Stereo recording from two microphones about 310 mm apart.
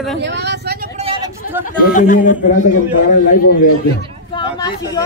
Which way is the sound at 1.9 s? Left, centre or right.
Left.